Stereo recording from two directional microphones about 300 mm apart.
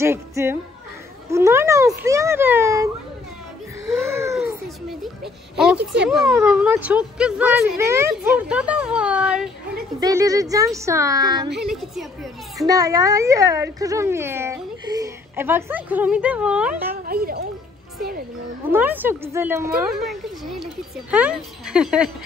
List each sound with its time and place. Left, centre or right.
0.0 s speech: centre
4.1 s baby cry: centre
5.2 s speech: centre
11.6 s speech: centre
12.6 s speech: centre
16.9 s speech: right
18.7 s speech: centre